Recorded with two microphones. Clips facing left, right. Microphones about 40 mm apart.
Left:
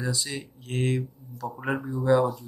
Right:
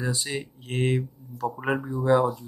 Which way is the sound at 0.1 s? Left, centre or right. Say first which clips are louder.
Right 2 dB; right.